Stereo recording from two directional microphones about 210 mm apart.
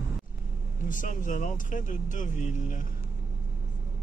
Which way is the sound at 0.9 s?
40° left (ahead or behind).